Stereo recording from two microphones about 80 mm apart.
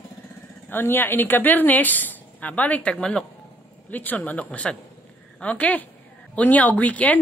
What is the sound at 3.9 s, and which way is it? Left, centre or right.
A woman's voice, left.